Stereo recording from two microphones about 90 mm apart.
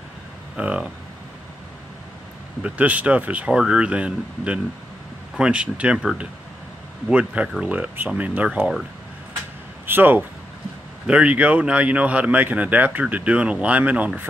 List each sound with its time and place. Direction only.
0.6 s speech: 10° right (ahead or behind)
2.6 s speech: 15° right (ahead or behind)
9.8 s speech: 20° right (ahead or behind)